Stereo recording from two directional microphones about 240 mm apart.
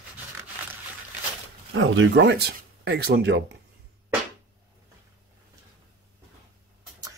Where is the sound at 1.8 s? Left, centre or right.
Right.